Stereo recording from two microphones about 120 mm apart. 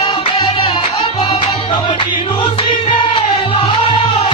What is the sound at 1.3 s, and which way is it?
Music, 45° left (ahead or behind).